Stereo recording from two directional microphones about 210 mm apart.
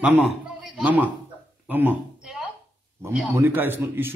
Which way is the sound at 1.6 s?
5° right (ahead or behind).